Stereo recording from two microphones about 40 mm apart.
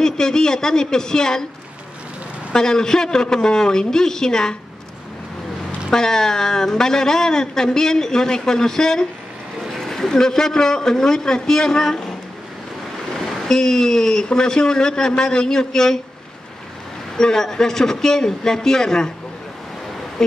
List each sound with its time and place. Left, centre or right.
0.0 s speech: centre
2.5 s speech: centre
5.9 s speech: centre
13.1 s speech: centre
17.2 s speech: centre
20.2 s speech: centre